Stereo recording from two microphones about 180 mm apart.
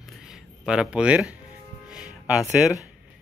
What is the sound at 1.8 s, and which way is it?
Music, 5° right (ahead or behind).